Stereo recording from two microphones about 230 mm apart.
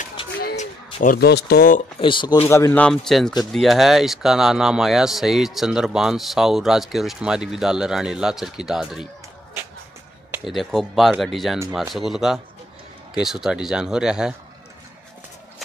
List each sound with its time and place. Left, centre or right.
0.4 s a sound: left
1.0 s speech: left
2.0 s speech: left; by 9.1 s centre
10.3 s speech: centre